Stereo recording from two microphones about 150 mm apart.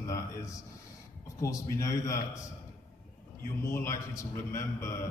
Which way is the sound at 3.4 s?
15° left (ahead or behind).